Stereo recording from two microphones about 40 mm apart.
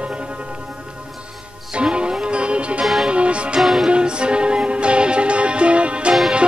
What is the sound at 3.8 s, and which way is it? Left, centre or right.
Music, right.